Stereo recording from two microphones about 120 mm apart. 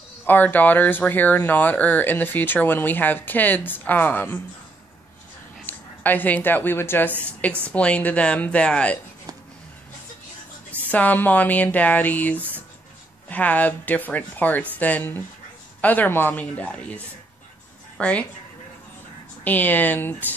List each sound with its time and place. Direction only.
0.2 s speech: 15° left (ahead or behind)
5.7 s a woman's voice: 15° left (ahead or behind)
10.9 s speech: 15° left (ahead or behind)
12.4 s a sound: 15° right (ahead or behind)
13.3 s speech: 10° left (ahead or behind)
19.4 s speech: 15° left (ahead or behind)